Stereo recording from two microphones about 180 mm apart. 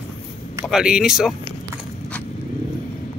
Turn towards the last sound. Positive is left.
turn(degrees=-5)  # may be behind; listen again after turning